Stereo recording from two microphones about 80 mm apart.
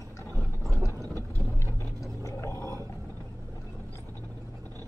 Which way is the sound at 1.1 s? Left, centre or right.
Right.